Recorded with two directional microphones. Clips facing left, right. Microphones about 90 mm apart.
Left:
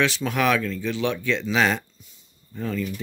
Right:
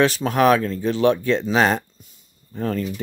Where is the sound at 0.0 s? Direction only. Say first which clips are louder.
Right 5 dB; 40° right (ahead or behind).